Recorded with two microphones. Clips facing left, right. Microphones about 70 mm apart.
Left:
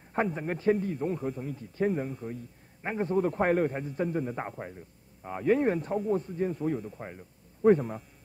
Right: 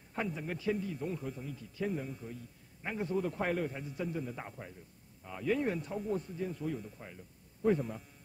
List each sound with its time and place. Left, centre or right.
0.1 s speech: left
1.9 s speech: left
2.8 s a man's voice: left